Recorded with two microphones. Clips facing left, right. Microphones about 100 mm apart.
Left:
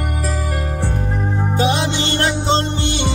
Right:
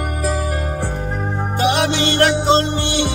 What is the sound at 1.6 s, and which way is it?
Music, 20° left (ahead or behind).